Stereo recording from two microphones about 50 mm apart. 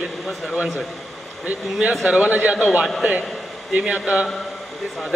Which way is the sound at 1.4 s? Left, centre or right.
Right.